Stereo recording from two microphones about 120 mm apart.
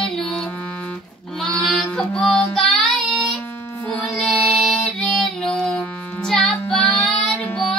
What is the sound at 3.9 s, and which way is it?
Music, 10° left (ahead or behind).